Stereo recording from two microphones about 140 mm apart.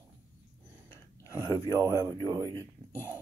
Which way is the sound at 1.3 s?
20° left (ahead or behind).